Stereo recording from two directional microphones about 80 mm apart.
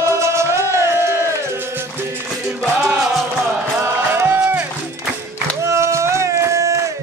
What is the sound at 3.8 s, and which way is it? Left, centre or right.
Music, right.